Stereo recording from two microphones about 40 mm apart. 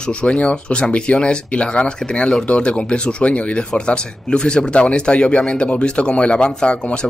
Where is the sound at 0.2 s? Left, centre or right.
Left.